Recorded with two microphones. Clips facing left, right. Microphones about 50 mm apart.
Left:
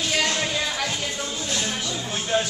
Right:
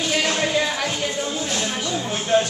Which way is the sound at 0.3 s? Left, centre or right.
Right.